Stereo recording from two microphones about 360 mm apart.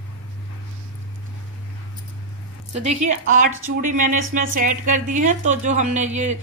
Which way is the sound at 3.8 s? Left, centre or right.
Right.